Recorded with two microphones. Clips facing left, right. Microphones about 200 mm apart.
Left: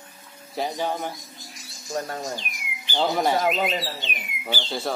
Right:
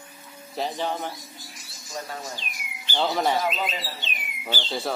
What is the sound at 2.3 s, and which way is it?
Bird, 15° left (ahead or behind).